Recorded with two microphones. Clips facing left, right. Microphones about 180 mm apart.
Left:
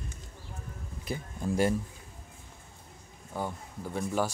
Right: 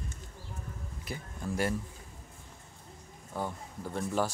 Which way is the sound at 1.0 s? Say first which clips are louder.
Left 5 dB; 20° left (ahead or behind).